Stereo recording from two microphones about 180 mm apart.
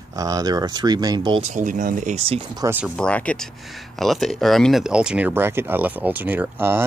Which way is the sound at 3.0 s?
5° left (ahead or behind).